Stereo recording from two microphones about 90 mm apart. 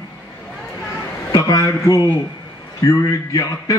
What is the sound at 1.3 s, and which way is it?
A man's voice, 45° left (ahead or behind).